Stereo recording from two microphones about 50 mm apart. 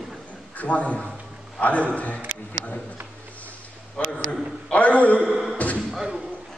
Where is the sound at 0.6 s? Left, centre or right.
Left.